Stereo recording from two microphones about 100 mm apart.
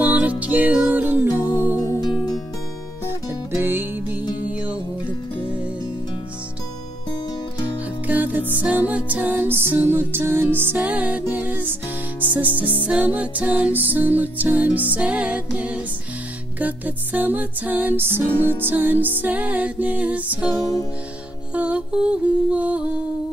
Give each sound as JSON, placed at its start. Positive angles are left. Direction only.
{"t": 0.0, "sound": "music", "side_deg": -15}
{"t": 1.9, "sound": "music", "side_deg": 45}
{"t": 3.1, "sound": "music", "side_deg": -25}
{"t": 8.1, "sound": "music", "side_deg": -15}
{"t": 21.5, "sound": "music", "side_deg": -10}